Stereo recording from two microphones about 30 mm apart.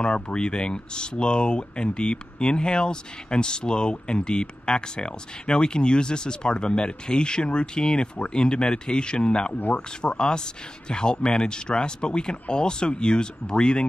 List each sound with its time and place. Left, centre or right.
0.0 s speech: left